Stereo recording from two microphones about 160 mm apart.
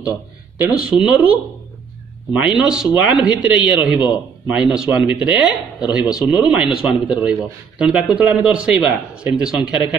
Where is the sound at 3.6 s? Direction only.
30° left (ahead or behind).